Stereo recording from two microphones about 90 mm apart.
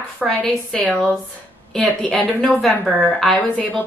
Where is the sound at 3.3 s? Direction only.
10° left (ahead or behind).